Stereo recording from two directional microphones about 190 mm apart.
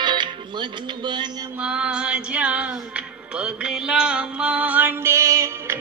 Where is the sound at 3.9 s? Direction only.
5° right (ahead or behind).